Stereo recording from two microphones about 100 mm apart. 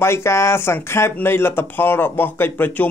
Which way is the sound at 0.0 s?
25° left (ahead or behind).